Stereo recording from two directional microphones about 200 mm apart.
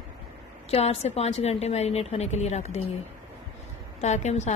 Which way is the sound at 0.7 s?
30° left (ahead or behind).